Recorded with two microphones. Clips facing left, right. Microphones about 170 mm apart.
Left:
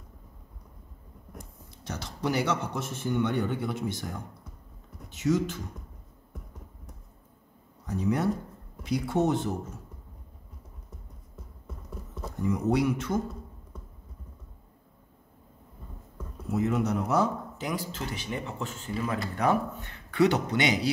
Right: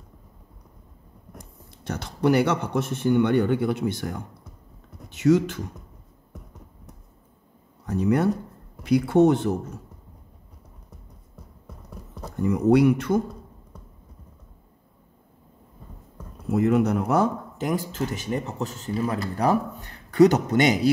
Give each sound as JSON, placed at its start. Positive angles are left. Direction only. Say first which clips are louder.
{"t": 1.9, "sound": "speech", "louder": "right 9 dB", "side_deg": -60}
{"t": 5.1, "sound": "speech", "louder": "right 7 dB", "side_deg": -65}
{"t": 7.8, "sound": "speech", "louder": "right 6 dB", "side_deg": -60}
{"t": 12.4, "sound": "speech", "louder": "right 8 dB", "side_deg": -60}
{"t": 16.5, "sound": "speech", "louder": "right 6 dB", "side_deg": -60}